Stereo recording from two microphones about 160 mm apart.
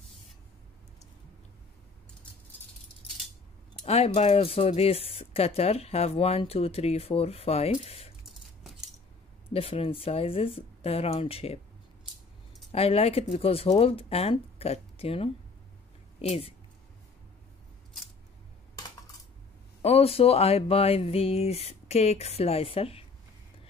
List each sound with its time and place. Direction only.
3.8 s speech: 40° left (ahead or behind)
9.5 s speech: 35° left (ahead or behind)
12.7 s speech: 40° left (ahead or behind)
19.8 s speech: 40° left (ahead or behind)